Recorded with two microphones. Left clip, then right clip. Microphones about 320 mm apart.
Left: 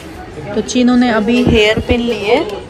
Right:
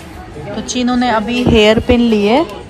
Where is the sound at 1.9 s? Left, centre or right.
Right.